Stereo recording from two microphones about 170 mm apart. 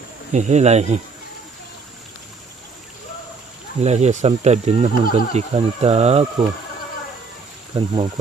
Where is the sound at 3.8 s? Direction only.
40° right (ahead or behind).